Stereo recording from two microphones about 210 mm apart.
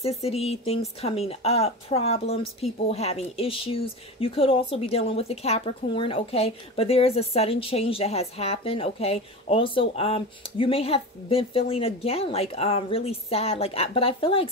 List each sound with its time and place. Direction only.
0.0 s speech: 30° left (ahead or behind)